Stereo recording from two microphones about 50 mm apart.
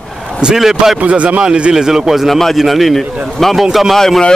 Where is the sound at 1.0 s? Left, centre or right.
Right.